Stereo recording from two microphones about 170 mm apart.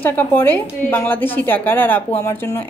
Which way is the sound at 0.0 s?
10° left (ahead or behind).